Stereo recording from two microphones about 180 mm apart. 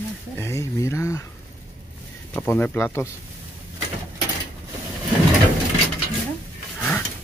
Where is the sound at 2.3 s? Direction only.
10° left (ahead or behind).